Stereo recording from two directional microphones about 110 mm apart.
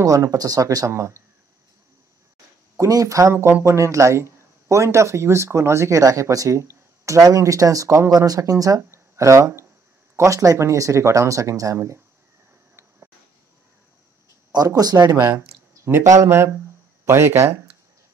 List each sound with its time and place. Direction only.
0.0 s speech: 30° right (ahead or behind)
2.8 s speech: 30° right (ahead or behind)
14.5 s speech: 35° right (ahead or behind)
15.8 s speech: 25° right (ahead or behind)